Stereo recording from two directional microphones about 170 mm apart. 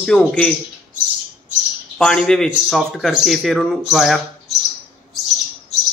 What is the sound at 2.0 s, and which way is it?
Speech, 5° left (ahead or behind).